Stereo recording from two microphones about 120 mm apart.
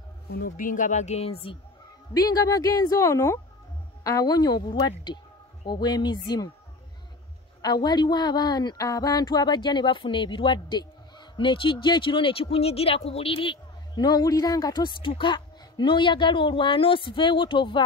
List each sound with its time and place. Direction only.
0.7 s speech: 85° left; by 1.6 s 50° left (ahead or behind)
2.1 s speech: 30° left (ahead or behind)
7.6 s speech: 35° left (ahead or behind)